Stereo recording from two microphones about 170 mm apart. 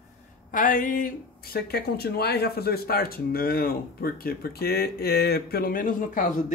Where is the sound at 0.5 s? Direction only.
55° left (ahead or behind).